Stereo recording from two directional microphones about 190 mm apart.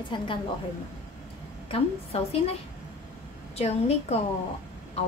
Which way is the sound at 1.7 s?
30° left (ahead or behind).